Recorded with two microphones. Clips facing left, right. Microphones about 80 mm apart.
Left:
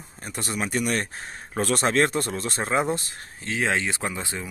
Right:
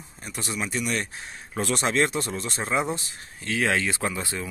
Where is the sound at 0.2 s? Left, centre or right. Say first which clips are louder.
Left 2 dB; left.